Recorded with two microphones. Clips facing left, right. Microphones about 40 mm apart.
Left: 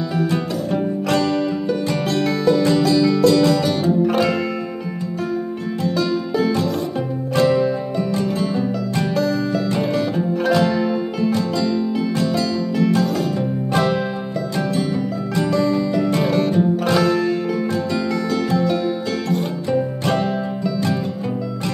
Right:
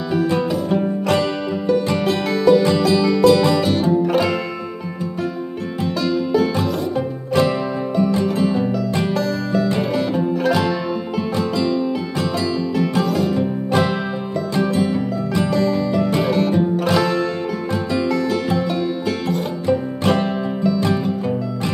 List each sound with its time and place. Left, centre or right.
0.1 s music: centre
1.9 s music: centre
3.8 s music: centre
7.3 s music: centre
9.1 s music: centre
11.3 s music: right
12.7 s music: centre
15.5 s music: centre
19.3 s music: centre